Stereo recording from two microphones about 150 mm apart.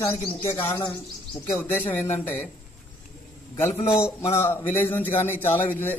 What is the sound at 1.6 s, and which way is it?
Speech, 15° left (ahead or behind).